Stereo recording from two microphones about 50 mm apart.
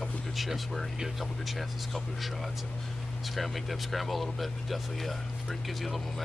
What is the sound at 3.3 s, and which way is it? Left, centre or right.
Speech, centre.